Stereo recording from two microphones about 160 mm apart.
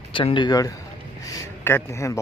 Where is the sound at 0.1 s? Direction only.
30° left (ahead or behind).